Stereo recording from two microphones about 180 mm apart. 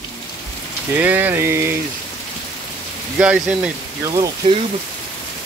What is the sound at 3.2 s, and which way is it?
Rain on surface, 5° right (ahead or behind).